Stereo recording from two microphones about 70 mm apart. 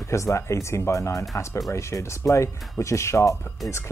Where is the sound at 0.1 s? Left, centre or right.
Left.